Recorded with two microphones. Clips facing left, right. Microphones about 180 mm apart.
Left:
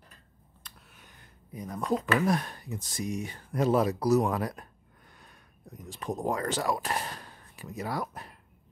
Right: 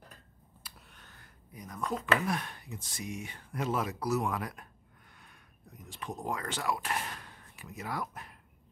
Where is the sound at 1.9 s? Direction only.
40° left (ahead or behind).